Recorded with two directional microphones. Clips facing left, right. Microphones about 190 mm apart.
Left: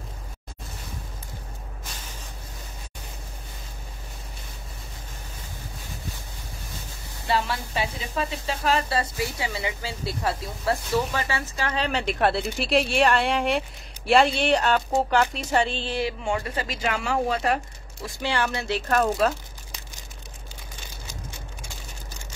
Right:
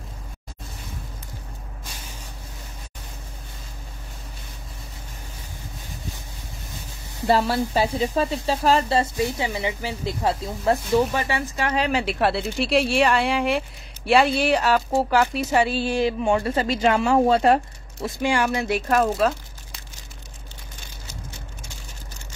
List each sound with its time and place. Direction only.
7.2 s speech: 40° right (ahead or behind); by 16.1 s 10° right (ahead or behind)
16.1 s speech: 30° right (ahead or behind)
18.0 s speech: 15° right (ahead or behind)
18.9 s speech: centre (ahead or behind)